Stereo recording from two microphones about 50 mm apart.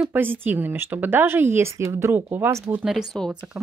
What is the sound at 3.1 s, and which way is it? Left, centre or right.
Speech, centre.